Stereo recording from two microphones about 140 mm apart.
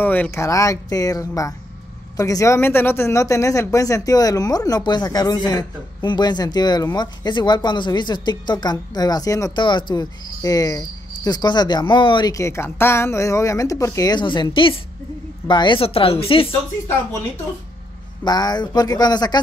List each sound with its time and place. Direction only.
0.0 s speech: 15° left (ahead or behind)
9.6 s speech: 35° left (ahead or behind)
18.2 s speech: 30° left (ahead or behind)